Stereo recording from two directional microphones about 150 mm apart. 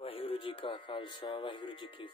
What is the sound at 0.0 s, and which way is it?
Speech, 40° left (ahead or behind).